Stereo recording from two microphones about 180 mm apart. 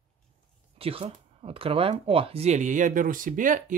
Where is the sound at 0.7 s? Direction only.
30° right (ahead or behind).